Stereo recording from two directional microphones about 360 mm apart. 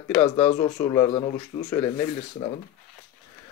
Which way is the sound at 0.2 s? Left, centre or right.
Centre.